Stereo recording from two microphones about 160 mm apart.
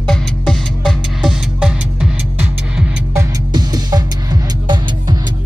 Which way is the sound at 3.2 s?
25° right (ahead or behind).